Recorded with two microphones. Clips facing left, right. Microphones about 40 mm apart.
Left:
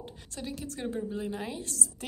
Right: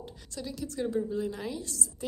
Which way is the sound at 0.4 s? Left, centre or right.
Left.